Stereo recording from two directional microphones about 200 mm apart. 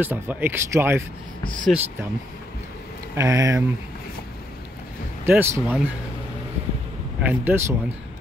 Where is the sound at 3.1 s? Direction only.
15° right (ahead or behind).